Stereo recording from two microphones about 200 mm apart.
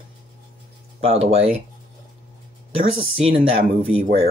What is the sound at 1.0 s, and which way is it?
Speech, 30° right (ahead or behind).